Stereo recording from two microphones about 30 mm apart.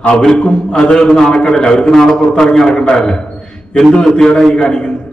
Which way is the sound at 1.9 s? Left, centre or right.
Centre.